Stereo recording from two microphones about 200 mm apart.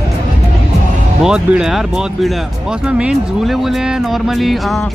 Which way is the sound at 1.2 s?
5° right (ahead or behind).